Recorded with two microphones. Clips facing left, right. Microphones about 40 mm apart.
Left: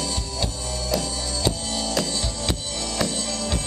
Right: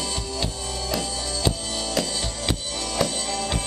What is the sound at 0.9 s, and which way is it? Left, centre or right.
Music, centre.